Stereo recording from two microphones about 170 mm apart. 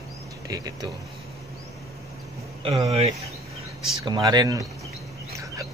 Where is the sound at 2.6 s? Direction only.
20° right (ahead or behind).